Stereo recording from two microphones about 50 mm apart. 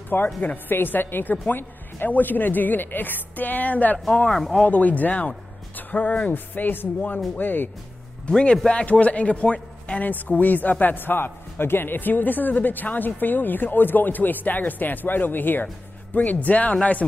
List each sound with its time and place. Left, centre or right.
0.1 s a man's voice: left
8.3 s a man's voice: centre; by 15.7 s left
16.2 s a man's voice: left